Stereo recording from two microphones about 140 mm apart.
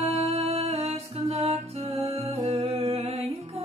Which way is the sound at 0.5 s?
50° right (ahead or behind).